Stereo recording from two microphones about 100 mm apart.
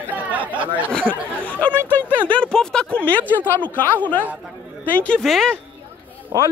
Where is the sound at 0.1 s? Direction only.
15° right (ahead or behind).